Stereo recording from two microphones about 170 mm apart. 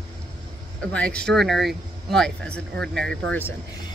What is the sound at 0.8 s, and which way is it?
Speech, 5° left (ahead or behind).